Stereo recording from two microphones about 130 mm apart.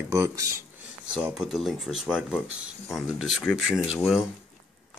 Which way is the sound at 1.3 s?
5° right (ahead or behind).